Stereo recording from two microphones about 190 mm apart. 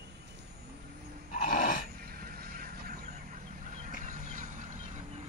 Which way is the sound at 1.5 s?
50° left (ahead or behind).